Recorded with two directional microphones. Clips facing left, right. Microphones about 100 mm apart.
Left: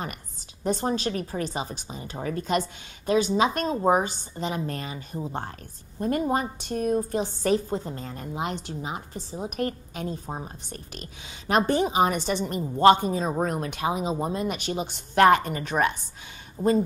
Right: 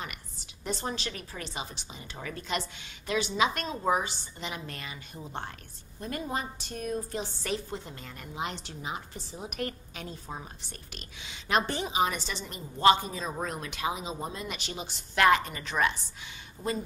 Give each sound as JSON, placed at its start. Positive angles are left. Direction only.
{"t": 0.7, "sound": "a woman's voice", "side_deg": 40}
{"t": 16.6, "sound": "a woman's voice", "side_deg": 35}